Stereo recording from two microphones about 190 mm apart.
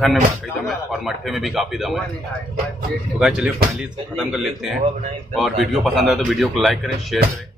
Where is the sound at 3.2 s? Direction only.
5° right (ahead or behind).